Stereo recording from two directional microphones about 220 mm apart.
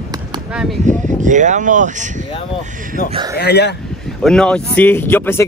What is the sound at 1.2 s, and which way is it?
Speech, 35° right (ahead or behind).